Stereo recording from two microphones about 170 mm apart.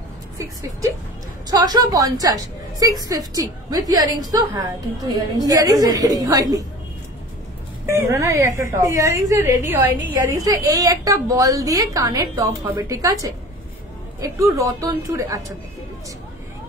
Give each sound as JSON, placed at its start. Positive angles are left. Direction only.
{"t": 0.4, "sound": "a woman's voice", "side_deg": -20}
{"t": 7.8, "sound": "a woman's voice", "side_deg": -15}